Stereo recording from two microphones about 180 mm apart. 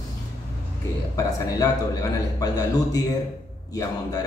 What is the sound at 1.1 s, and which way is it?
Speech, 20° left (ahead or behind).